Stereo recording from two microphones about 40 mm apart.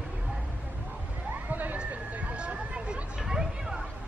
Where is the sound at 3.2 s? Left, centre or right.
Centre.